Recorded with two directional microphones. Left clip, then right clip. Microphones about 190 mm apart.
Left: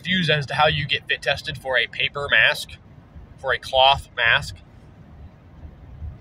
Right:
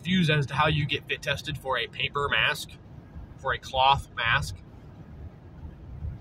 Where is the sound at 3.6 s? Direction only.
15° right (ahead or behind).